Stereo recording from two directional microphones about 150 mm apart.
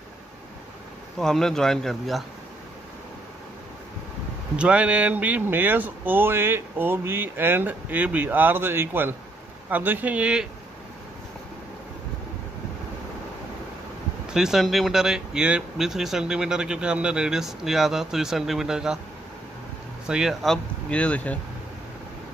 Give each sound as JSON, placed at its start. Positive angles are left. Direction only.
{"t": 1.2, "sound": "speech", "side_deg": 5}
{"t": 4.6, "sound": "speech", "side_deg": -10}
{"t": 14.2, "sound": "speech", "side_deg": -5}
{"t": 20.1, "sound": "speech", "side_deg": -5}